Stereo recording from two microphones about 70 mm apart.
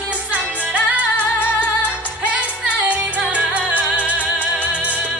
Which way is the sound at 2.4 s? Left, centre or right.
Right.